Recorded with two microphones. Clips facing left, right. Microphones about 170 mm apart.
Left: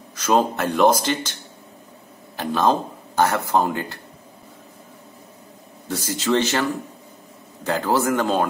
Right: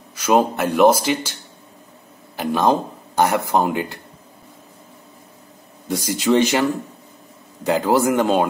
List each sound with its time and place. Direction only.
0.1 s speech: 10° right (ahead or behind)
2.3 s speech: 10° right (ahead or behind)
5.9 s speech: 15° right (ahead or behind)